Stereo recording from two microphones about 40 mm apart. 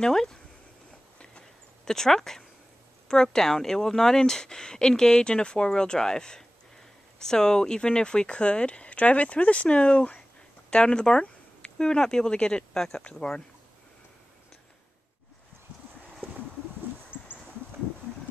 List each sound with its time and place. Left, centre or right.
0.0 s speech: centre
1.9 s speech: centre
17.1 s a sound: right